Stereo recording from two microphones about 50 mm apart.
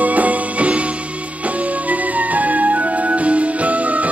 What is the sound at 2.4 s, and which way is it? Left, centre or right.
Music, right.